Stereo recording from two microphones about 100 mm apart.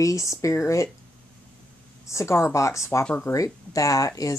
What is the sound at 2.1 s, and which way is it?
Speech, 30° left (ahead or behind).